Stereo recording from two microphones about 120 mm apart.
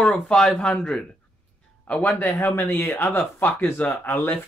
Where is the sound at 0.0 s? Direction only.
5° left (ahead or behind).